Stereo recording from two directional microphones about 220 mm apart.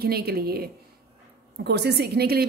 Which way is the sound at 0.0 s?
45° right (ahead or behind).